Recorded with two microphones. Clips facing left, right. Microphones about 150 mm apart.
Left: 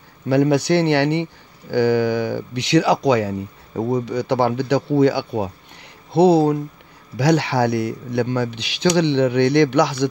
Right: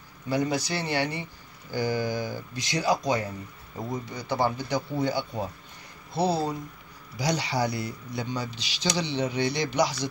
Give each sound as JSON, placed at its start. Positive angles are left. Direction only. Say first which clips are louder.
{"t": 0.3, "sound": "speech", "louder": "left 11 dB", "side_deg": 65}